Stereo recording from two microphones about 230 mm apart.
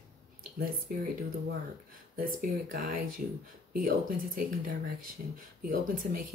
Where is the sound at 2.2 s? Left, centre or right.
Right.